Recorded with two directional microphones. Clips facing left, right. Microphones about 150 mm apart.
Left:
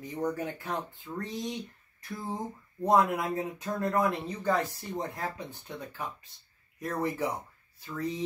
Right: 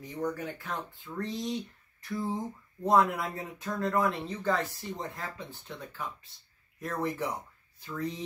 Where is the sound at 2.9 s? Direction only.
15° left (ahead or behind).